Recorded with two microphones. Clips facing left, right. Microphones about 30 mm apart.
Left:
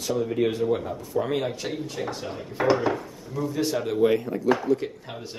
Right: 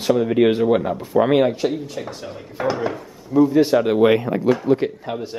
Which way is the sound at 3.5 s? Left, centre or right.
Right.